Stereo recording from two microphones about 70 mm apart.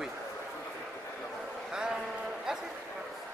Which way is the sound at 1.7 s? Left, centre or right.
Centre.